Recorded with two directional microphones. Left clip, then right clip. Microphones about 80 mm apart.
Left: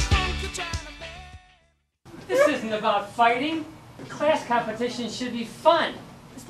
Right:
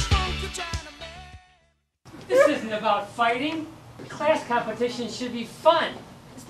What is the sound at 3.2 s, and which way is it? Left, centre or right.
A woman's voice, centre.